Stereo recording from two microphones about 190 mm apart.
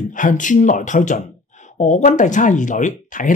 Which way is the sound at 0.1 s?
45° left (ahead or behind).